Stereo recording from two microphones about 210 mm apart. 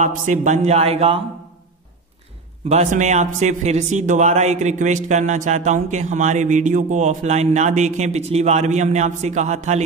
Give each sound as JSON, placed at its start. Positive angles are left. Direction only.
{"t": 0.4, "sound": "a man's voice", "side_deg": -35}
{"t": 2.7, "sound": "a man's voice", "side_deg": -35}